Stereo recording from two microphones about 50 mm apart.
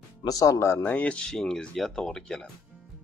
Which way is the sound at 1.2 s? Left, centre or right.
Centre.